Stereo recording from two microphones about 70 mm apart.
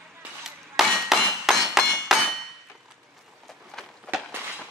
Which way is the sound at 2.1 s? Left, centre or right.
Centre.